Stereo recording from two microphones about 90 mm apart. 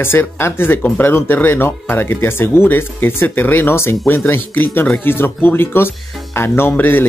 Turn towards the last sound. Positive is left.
turn(degrees=25)  # may be behind; listen again after turning